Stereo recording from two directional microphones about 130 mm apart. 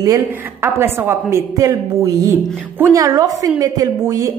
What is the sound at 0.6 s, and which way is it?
A woman's voice, 20° right (ahead or behind).